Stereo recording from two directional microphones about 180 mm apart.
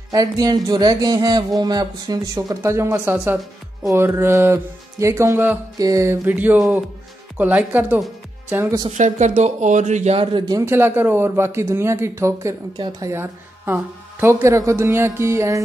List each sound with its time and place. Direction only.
0.1 s speech: 20° right (ahead or behind)
8.8 s speech: 40° right (ahead or behind); by 15.6 s 15° right (ahead or behind)